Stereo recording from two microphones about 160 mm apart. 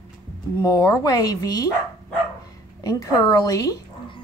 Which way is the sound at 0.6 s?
20° left (ahead or behind).